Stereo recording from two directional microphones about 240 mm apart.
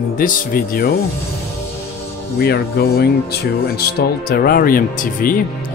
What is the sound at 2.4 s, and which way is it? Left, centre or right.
Speech, left.